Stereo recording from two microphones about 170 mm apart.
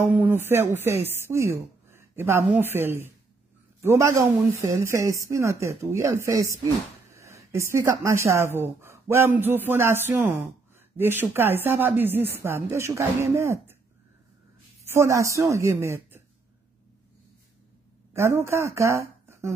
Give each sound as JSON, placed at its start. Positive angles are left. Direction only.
{"t": 0.0, "sound": "speech", "side_deg": -10}
{"t": 14.9, "sound": "speech", "side_deg": -15}
{"t": 18.1, "sound": "speech", "side_deg": -15}